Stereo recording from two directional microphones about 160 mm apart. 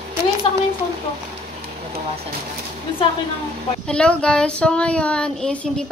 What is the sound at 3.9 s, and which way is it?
Child singing, 5° left (ahead or behind).